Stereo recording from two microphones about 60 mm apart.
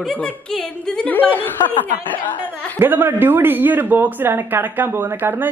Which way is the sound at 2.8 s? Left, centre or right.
Right.